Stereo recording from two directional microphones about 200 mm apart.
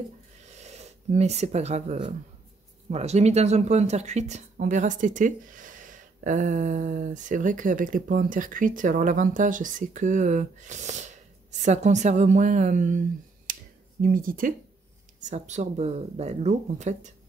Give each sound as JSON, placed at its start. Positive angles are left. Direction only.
{"t": 0.5, "sound": "speech", "side_deg": -35}
{"t": 13.5, "sound": "finger snapping", "side_deg": -40}
{"t": 14.0, "sound": "speech", "side_deg": -45}